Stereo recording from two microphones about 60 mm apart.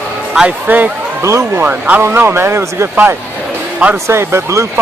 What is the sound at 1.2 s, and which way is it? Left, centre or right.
Speech, right.